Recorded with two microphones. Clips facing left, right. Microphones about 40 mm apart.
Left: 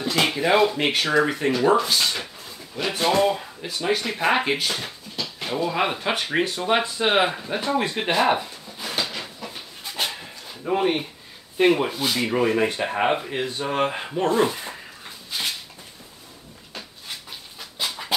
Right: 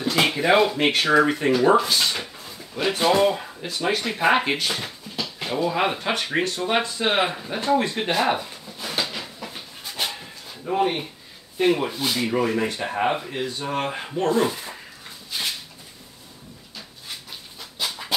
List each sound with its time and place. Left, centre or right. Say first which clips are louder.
0.0 s speech: right 1 dB; centre
6.1 s speech: even; centre
8.9 s a sound: even; centre
9.4 s dog: even; centre
10.6 s speech: left 1 dB; centre
11.9 s speech: left 1 dB; centre
12.2 s speech: left 2 dB; centre
17.6 s dog: even; centre